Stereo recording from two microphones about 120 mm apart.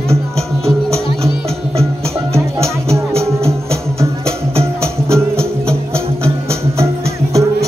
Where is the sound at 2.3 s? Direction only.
25° right (ahead or behind).